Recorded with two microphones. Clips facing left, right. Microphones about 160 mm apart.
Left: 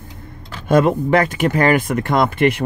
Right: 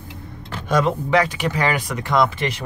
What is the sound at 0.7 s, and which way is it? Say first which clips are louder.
Speech: left 5 dB; 55° left (ahead or behind).